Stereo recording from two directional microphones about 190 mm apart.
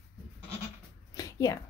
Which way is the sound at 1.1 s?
20° left (ahead or behind).